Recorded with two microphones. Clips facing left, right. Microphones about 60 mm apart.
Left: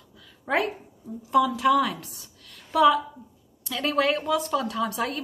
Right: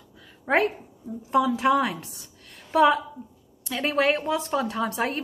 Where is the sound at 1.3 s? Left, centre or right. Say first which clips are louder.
Left 1 dB; right.